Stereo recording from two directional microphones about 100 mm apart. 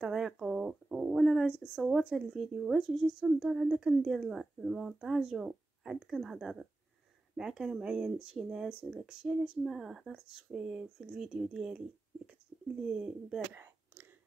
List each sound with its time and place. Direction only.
0.0 s bird: 5° right (ahead or behind)
1.8 s a woman's voice: 5° right (ahead or behind)
12.8 s speech: 5° right (ahead or behind)
13.5 s a sound: 25° right (ahead or behind)